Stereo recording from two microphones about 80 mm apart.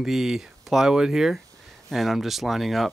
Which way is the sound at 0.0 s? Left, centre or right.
Centre.